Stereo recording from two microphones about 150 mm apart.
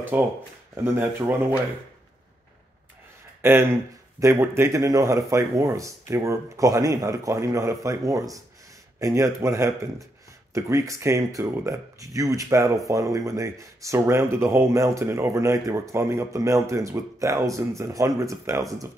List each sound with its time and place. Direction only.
0.1 s speech: 10° right (ahead or behind)
3.4 s speech: 15° right (ahead or behind)